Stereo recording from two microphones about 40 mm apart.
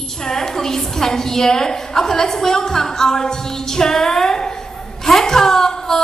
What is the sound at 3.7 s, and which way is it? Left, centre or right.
Music, centre.